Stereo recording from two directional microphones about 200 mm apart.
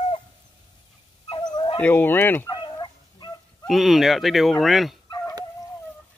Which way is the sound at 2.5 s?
25° left (ahead or behind).